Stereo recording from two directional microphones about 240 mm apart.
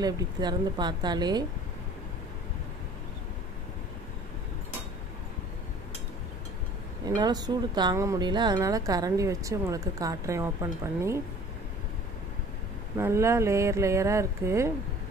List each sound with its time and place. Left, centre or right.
0.0 s speech: centre
7.2 s speech: centre
12.9 s speech: centre